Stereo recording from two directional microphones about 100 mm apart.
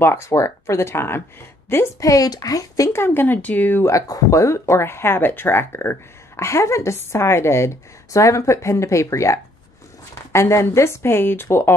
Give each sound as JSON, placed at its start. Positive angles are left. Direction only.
{"t": 0.0, "sound": "speech", "side_deg": 25}
{"t": 3.8, "sound": "speech", "side_deg": 30}